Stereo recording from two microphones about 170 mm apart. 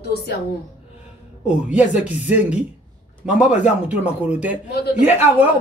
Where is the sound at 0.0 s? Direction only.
75° left (ahead or behind).